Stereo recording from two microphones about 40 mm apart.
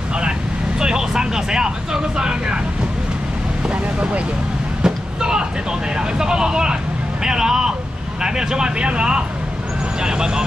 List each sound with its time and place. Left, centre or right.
0.7 s speech: centre
3.7 s vehicle: right
4.8 s speech: centre